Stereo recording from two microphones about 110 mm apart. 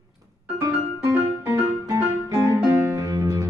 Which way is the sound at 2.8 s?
30° right (ahead or behind).